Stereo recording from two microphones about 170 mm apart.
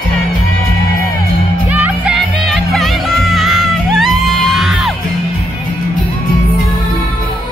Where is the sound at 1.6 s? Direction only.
10° right (ahead or behind).